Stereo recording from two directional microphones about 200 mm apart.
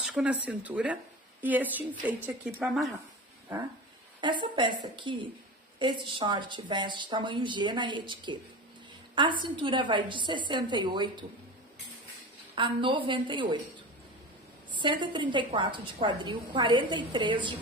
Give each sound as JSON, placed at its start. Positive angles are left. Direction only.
{"t": 0.0, "sound": "a woman's voice", "side_deg": -5}
{"t": 4.2, "sound": "a woman's voice", "side_deg": -25}
{"t": 12.5, "sound": "a woman's voice", "side_deg": -25}
{"t": 14.7, "sound": "a woman's voice", "side_deg": -25}